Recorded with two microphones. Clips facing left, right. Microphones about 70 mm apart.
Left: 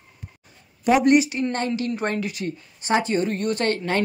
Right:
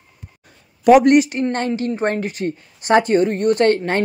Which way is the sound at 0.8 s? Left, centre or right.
Right.